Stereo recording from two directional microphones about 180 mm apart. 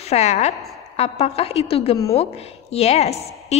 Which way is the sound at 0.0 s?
35° left (ahead or behind).